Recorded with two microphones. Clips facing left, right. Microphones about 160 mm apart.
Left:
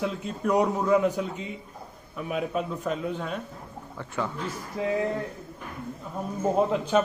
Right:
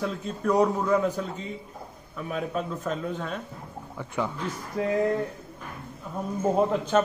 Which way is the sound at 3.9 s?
15° right (ahead or behind).